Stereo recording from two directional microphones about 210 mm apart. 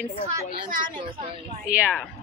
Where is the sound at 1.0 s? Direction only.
25° right (ahead or behind).